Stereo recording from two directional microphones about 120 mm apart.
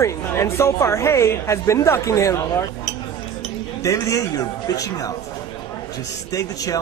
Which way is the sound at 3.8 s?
25° left (ahead or behind).